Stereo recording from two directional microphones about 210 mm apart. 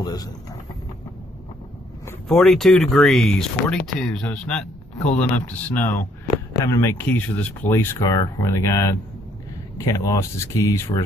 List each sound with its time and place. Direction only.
0.0 s speech: 20° left (ahead or behind)
2.0 s speech: 5° left (ahead or behind)